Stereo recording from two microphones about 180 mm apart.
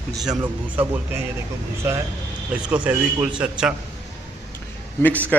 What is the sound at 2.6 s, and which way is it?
A man's voice, 5° right (ahead or behind).